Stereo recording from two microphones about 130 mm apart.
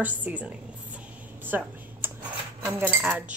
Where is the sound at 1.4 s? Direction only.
15° right (ahead or behind).